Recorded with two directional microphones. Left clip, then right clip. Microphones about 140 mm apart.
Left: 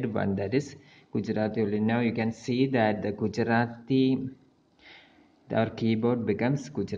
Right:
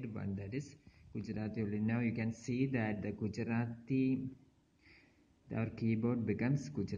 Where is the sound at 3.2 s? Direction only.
35° left (ahead or behind).